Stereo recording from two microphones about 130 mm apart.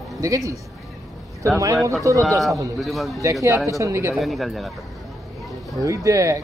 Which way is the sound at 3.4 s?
20° right (ahead or behind).